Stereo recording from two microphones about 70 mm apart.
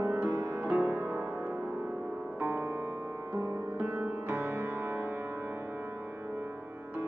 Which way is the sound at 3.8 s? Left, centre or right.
Right.